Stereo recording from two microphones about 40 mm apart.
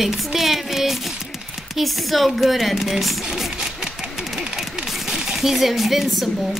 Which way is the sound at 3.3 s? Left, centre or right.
Centre.